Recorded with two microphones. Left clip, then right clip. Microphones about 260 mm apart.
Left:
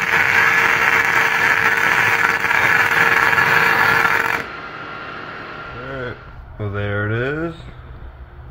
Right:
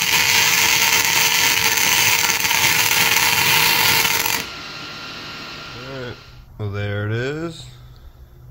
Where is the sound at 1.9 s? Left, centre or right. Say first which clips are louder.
Left 2 dB; right.